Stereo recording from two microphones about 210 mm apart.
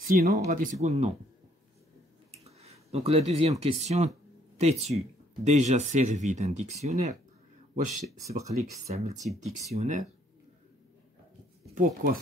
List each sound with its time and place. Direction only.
0.5 s speech: 40° right (ahead or behind)
2.3 s speech: 30° right (ahead or behind)
9.2 s speech: centre (ahead or behind)
9.8 s speech: 35° right (ahead or behind)
11.7 s speech: 40° right (ahead or behind)